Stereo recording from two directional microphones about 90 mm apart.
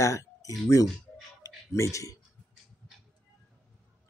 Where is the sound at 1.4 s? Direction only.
35° left (ahead or behind).